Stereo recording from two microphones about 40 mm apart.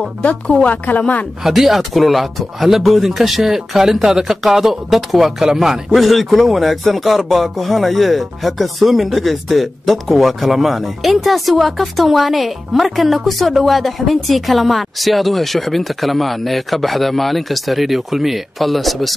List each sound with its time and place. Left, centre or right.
0.7 s speech: left
1.4 s a man's voice: centre